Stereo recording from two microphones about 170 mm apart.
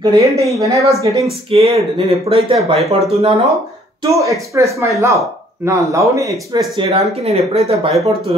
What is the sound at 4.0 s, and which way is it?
Speech, 20° right (ahead or behind).